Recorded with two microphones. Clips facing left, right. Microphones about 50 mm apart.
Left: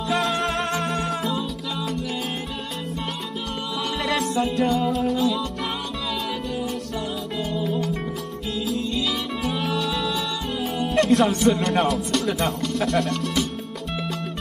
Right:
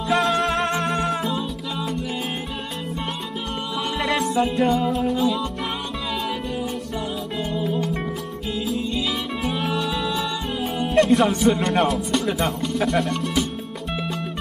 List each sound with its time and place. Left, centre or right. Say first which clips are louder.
0.1 s music: right 3 dB; centre
4.0 s music: right 2 dB; centre
7.6 s music: right 1 dB; centre
11.8 s speech: right 1 dB; centre
13.1 s music: right 1 dB; centre